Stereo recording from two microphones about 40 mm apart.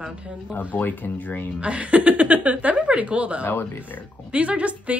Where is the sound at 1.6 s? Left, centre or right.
Right.